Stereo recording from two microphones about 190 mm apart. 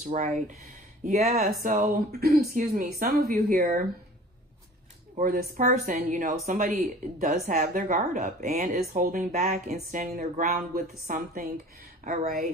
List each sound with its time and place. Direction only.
0.0 s speech: 40° right (ahead or behind)
5.2 s speech: 50° right (ahead or behind)